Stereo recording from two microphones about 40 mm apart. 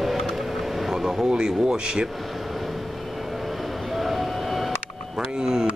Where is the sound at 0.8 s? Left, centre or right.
Centre.